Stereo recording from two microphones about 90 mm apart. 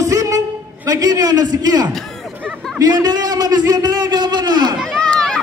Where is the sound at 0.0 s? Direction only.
40° right (ahead or behind).